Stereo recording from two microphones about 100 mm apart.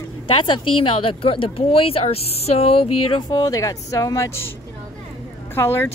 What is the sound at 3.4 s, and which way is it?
Speech, 35° left (ahead or behind).